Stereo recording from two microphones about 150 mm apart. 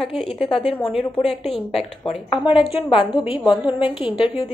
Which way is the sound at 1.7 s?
40° left (ahead or behind).